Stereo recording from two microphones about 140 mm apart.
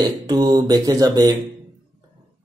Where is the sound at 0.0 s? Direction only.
30° right (ahead or behind).